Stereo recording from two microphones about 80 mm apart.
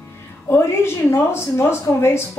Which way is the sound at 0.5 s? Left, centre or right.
Left.